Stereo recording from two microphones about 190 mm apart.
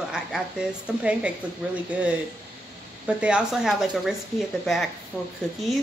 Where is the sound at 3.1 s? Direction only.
5° right (ahead or behind).